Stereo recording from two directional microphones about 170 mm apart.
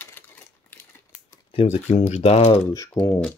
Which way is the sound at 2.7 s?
20° left (ahead or behind).